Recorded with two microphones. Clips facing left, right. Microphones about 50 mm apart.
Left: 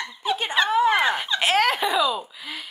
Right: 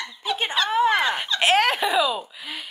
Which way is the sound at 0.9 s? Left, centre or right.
Centre.